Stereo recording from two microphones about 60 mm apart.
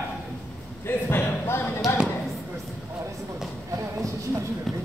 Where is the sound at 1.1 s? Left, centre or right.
Left.